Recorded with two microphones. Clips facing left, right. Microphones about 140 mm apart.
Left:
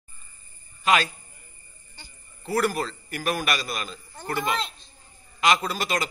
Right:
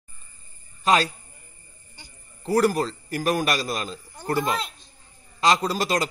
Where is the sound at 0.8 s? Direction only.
35° right (ahead or behind).